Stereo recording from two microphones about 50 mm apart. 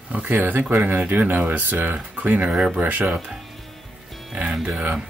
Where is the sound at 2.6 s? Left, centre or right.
Right.